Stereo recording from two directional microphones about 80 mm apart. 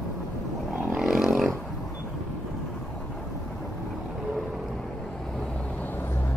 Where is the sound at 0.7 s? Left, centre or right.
Centre.